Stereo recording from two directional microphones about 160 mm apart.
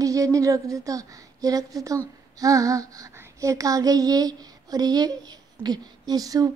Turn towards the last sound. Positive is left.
turn(degrees=-25)  # may be behind; listen again after turning